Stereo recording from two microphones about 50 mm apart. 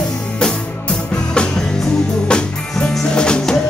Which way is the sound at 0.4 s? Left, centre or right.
Centre.